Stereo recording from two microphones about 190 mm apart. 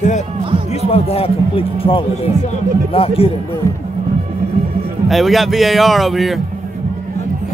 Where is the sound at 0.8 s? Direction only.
30° left (ahead or behind).